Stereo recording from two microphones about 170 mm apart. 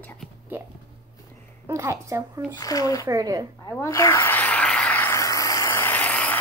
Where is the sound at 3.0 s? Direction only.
20° right (ahead or behind).